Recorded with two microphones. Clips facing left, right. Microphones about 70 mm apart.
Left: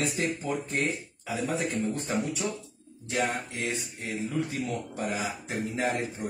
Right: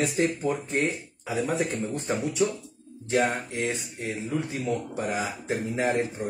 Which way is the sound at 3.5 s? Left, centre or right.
Right.